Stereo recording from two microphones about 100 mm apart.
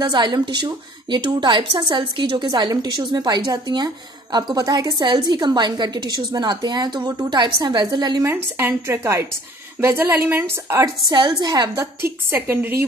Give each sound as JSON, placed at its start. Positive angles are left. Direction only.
{"t": 0.1, "sound": "a woman's voice", "side_deg": -45}
{"t": 4.9, "sound": "a woman's voice", "side_deg": -55}
{"t": 8.2, "sound": "speech", "side_deg": -25}
{"t": 11.1, "sound": "a woman's voice", "side_deg": -45}
{"t": 12.0, "sound": "speech", "side_deg": -25}